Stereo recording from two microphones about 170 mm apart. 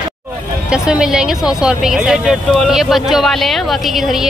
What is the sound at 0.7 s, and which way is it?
Speech, 5° right (ahead or behind).